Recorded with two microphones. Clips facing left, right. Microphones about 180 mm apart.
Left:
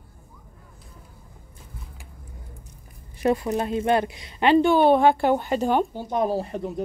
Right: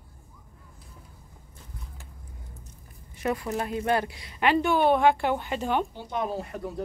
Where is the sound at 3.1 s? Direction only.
30° left (ahead or behind).